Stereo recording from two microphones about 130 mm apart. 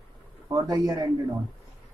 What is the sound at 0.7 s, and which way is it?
Speech, 30° right (ahead or behind).